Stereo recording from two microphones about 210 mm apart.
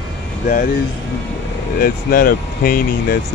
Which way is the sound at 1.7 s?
45° left (ahead or behind).